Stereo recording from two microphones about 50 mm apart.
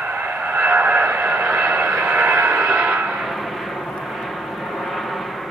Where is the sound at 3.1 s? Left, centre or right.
Centre.